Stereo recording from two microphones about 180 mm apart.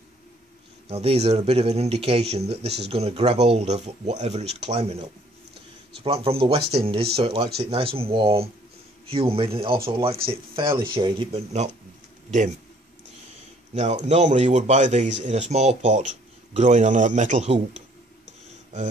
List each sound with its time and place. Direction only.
0.8 s speech: 35° right (ahead or behind)
12.3 s speech: 40° right (ahead or behind)
13.7 s speech: 40° right (ahead or behind)